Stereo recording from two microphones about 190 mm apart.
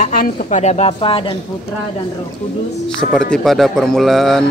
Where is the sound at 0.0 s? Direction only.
50° left (ahead or behind); by 1.3 s 30° left (ahead or behind).